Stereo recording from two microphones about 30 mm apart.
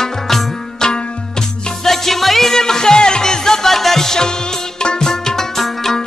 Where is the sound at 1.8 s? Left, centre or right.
Centre.